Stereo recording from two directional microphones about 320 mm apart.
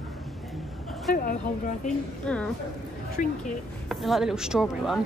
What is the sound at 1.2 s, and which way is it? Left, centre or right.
Speech, left.